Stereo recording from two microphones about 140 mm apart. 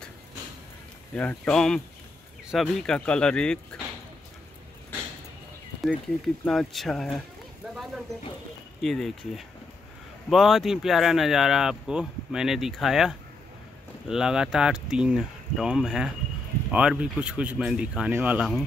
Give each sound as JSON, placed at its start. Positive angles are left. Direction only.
{"t": 1.1, "sound": "speech", "side_deg": 10}
{"t": 5.8, "sound": "speech", "side_deg": 5}
{"t": 7.7, "sound": "a sound", "side_deg": 0}
{"t": 8.8, "sound": "speech", "side_deg": 0}